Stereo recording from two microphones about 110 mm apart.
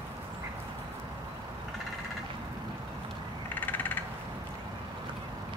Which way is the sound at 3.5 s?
15° left (ahead or behind).